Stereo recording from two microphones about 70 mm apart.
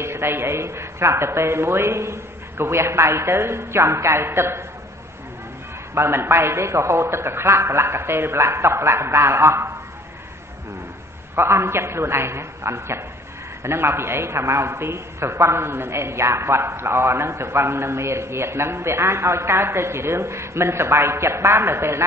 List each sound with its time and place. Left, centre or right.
0.0 s a man's voice: right
5.9 s a man's voice: right
11.3 s a man's voice: right